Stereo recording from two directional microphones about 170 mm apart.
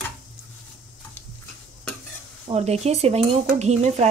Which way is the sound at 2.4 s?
40° right (ahead or behind).